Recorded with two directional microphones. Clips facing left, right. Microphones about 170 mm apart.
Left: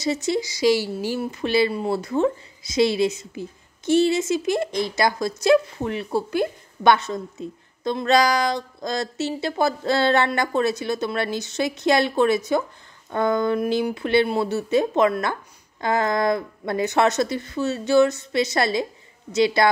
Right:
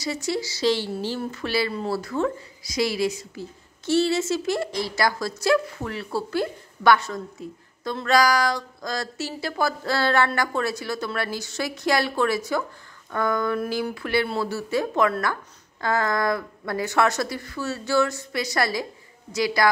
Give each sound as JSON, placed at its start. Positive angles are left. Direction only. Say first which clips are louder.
{"t": 0.0, "sound": "speech", "louder": "left 4 dB", "side_deg": 20}